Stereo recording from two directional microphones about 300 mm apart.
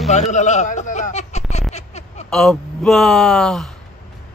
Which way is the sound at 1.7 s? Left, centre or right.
Left.